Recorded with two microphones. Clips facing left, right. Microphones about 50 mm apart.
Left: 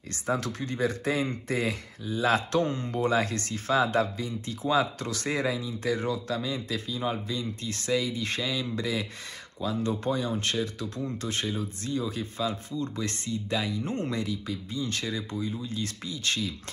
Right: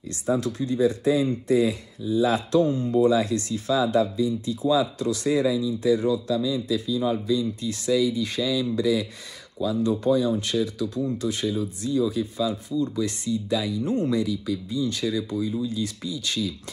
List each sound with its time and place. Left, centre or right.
0.1 s speech: left